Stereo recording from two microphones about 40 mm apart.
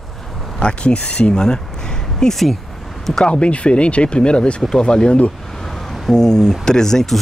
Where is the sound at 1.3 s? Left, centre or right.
Centre.